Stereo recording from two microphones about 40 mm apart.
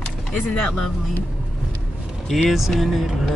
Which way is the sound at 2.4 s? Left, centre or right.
Centre.